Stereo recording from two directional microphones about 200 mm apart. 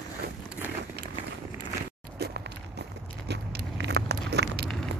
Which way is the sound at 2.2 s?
55° right (ahead or behind).